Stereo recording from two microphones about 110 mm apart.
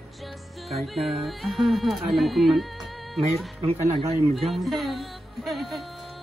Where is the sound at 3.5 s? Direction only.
70° right (ahead or behind).